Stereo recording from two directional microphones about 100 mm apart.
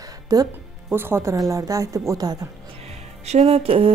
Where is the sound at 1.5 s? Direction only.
35° right (ahead or behind).